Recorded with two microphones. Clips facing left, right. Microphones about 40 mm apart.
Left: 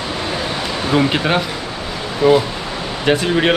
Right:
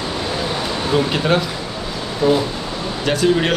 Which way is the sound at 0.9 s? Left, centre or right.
Left.